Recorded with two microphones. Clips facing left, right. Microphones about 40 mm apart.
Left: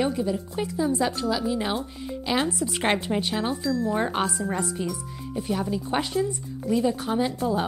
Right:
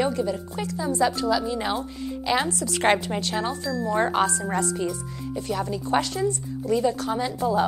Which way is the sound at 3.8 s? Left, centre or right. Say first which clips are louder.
Right 7 dB; centre.